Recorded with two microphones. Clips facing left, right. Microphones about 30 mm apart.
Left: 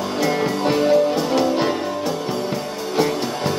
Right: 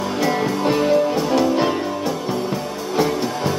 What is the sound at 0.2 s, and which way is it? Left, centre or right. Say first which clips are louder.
Music: even; centre.